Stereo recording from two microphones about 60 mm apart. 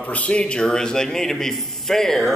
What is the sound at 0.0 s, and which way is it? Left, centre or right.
A man's voice, left.